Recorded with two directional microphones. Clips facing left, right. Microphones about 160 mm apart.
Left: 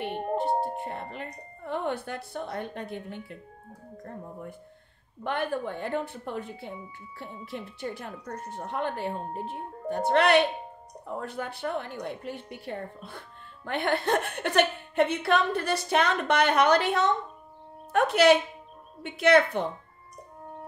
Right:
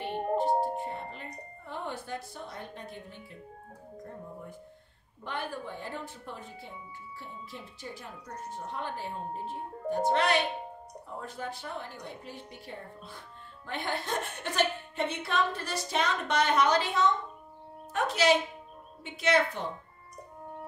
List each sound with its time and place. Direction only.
0.0 s music: 65° left (ahead or behind)
1.7 s a woman's voice: 65° left (ahead or behind)